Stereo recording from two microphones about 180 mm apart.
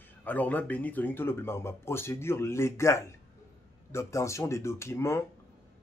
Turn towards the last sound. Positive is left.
turn(degrees=15)  # may be behind; listen again after turning